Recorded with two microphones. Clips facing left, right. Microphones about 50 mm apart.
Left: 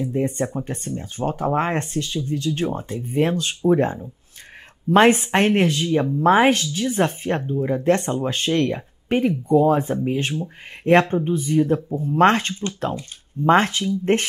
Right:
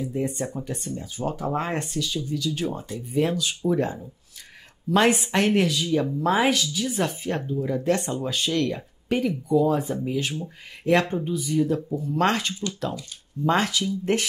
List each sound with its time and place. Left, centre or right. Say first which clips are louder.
0.0 s speech: left 5 dB; left